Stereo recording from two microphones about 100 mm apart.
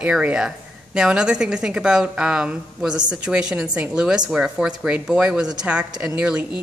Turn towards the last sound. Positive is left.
turn(degrees=-10)  # may be behind; listen again after turning